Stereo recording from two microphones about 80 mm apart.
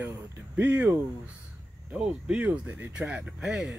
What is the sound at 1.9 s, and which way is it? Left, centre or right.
Speech, centre.